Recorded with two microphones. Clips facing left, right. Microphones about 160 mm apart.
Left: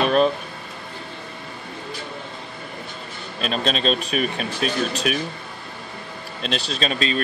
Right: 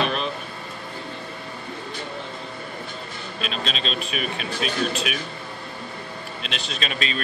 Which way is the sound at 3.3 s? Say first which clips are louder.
Left 6 dB; 45° left (ahead or behind).